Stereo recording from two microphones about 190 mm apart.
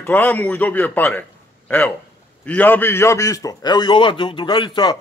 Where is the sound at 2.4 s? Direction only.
10° left (ahead or behind).